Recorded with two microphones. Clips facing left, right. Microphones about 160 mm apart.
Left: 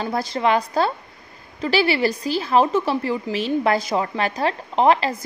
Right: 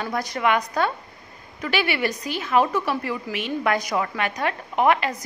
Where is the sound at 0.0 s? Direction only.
30° left (ahead or behind).